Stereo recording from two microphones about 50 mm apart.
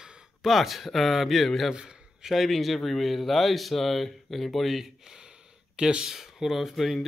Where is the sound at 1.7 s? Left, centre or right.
Centre.